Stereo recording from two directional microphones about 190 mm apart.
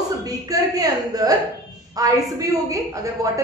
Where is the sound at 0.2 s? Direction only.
20° right (ahead or behind).